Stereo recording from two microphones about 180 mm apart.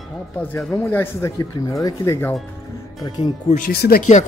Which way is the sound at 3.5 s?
45° left (ahead or behind).